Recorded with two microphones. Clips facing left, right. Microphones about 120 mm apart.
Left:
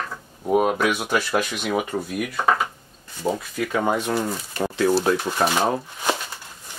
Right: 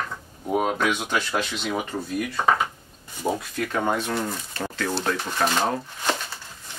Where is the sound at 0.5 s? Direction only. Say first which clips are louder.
Left 3 dB; 5° left (ahead or behind).